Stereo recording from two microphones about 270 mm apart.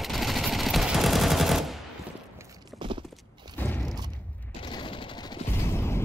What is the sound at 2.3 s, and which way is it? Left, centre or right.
Walk, centre.